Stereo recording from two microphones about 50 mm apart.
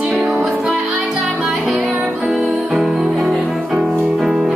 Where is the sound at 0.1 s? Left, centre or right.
Centre.